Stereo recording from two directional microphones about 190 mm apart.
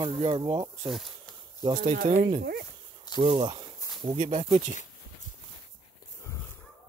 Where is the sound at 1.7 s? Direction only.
45° right (ahead or behind).